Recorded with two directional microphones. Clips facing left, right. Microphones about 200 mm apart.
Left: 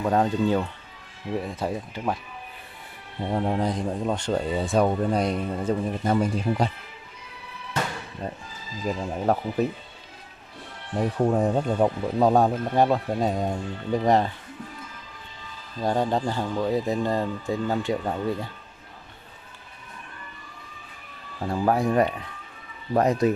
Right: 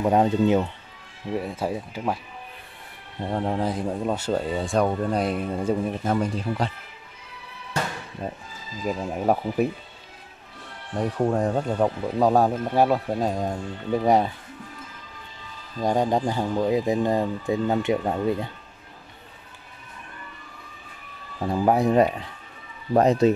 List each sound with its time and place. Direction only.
0.0 s speech: 20° right (ahead or behind)
1.3 s speech: 5° right (ahead or behind)
3.2 s speech: centre (ahead or behind)
6.1 s speech: 10° left (ahead or behind)
8.2 s speech: 5° right (ahead or behind)
11.0 s speech: 5° left (ahead or behind)
15.8 s speech: 15° right (ahead or behind)
21.4 s speech: 20° right (ahead or behind)